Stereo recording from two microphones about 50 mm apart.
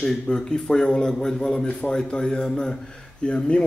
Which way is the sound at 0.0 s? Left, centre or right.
Centre.